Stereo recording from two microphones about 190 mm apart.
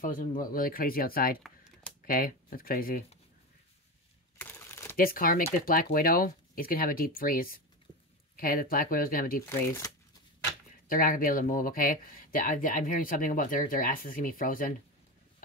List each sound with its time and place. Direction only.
0.0 s speech: 45° left (ahead or behind)
4.4 s crumpling: 10° left (ahead or behind)
4.9 s speech: 50° left (ahead or behind)
9.5 s speech: 15° left (ahead or behind)
10.9 s speech: 50° left (ahead or behind)